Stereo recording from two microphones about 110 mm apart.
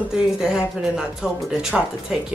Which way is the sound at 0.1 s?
5° right (ahead or behind).